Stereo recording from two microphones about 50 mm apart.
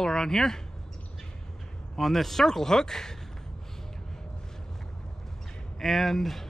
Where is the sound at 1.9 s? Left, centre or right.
Centre.